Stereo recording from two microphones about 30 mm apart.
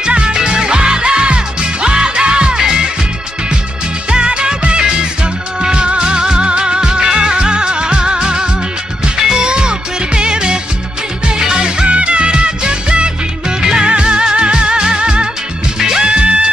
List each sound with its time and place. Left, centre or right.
0.0 s music: right
2.5 s music: centre
4.1 s music: right
13.6 s music: right
13.8 s music: right